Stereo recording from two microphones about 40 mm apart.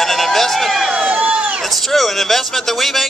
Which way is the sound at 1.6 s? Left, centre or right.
Centre.